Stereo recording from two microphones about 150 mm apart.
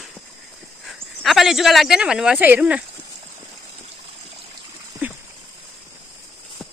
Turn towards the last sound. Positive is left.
turn(degrees=-10)  # may be behind; listen again after turning